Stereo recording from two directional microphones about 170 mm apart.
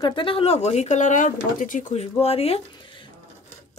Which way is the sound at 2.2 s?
35° left (ahead or behind).